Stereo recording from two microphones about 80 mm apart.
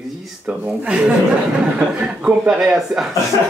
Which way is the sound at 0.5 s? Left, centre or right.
Centre.